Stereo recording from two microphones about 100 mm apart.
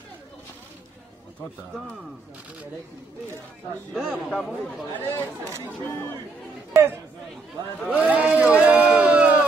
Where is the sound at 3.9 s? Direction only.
5° right (ahead or behind).